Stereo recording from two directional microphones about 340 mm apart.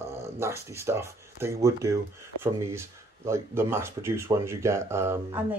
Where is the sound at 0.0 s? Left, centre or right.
Centre.